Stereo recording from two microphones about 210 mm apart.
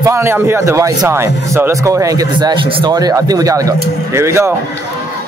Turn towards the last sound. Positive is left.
turn(degrees=-15)  # may be behind; listen again after turning